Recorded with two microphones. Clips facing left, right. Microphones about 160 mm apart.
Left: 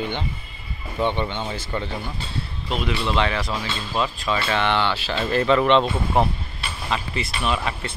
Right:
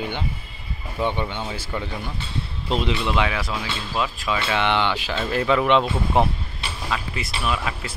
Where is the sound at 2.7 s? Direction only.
30° right (ahead or behind).